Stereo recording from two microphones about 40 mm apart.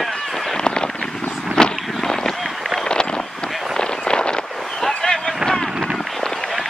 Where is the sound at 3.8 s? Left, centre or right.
Left.